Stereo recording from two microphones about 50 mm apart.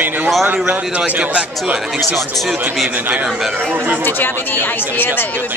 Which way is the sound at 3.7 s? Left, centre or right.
Right.